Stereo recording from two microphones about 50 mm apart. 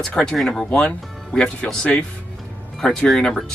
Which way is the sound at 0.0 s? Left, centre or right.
Centre.